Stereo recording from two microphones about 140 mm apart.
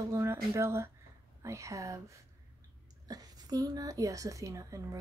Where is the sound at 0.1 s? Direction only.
20° right (ahead or behind).